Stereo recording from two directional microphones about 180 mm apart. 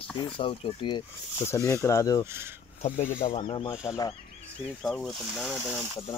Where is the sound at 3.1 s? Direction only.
45° left (ahead or behind).